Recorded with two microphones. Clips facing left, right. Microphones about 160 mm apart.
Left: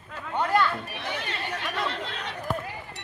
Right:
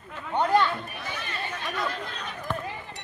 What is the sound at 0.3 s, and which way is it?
Chatter, 20° right (ahead or behind).